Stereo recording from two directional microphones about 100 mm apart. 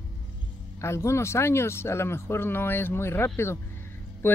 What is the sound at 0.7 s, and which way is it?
A man's voice, 30° left (ahead or behind).